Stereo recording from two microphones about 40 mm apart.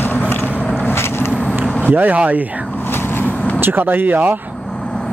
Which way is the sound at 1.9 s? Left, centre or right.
Right.